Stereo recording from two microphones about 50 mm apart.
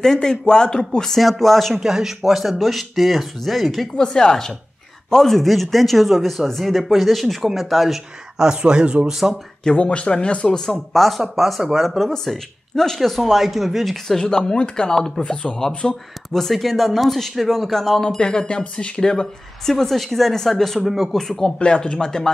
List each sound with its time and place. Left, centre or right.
0.0 s speech: centre
1.8 s speech: centre
3.9 s speech: centre
8.5 s speech: centre
9.0 s speech: centre
9.8 s speech: left; by 13.9 s centre
14.3 s speech: centre
15.0 s speech: centre
16.3 s speech: centre
21.1 s speech: centre